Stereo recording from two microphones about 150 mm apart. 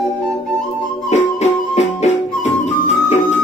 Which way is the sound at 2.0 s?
50° left (ahead or behind).